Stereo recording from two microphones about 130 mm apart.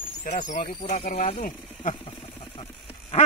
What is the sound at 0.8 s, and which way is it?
Speech, 55° left (ahead or behind).